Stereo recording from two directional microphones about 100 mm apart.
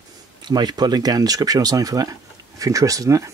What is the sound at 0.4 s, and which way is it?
Speech, 45° right (ahead or behind).